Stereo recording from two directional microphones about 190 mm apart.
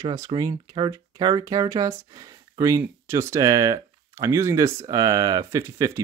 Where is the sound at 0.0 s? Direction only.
20° right (ahead or behind).